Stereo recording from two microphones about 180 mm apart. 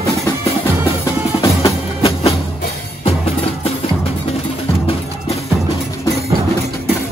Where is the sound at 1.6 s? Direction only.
30° left (ahead or behind).